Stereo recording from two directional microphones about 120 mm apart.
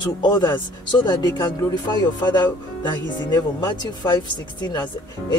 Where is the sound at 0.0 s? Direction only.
40° left (ahead or behind).